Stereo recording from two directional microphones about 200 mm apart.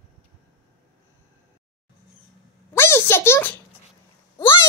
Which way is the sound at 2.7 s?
10° left (ahead or behind).